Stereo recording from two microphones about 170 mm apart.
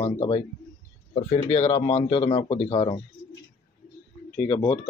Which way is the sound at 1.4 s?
40° left (ahead or behind).